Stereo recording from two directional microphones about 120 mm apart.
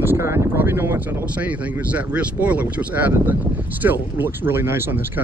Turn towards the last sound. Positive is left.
turn(degrees=-20)  # may be behind; listen again after turning